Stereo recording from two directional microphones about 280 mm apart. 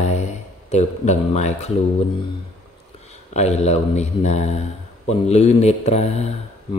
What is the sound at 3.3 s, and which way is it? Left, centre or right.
Speech, left.